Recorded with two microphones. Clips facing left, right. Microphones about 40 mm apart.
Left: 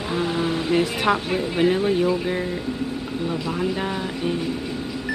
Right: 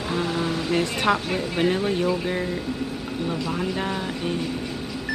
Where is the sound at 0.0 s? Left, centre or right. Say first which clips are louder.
Left 2 dB; centre.